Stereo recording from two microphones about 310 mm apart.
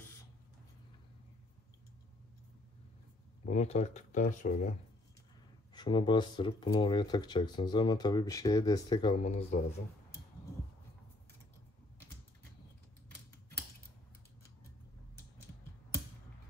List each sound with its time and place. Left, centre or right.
3.4 s speech: left
5.8 s speech: centre